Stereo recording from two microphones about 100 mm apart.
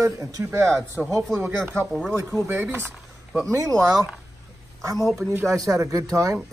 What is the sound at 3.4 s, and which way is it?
Speech, 35° right (ahead or behind).